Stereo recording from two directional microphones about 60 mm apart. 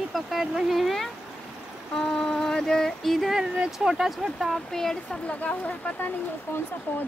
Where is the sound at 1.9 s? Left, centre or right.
Centre.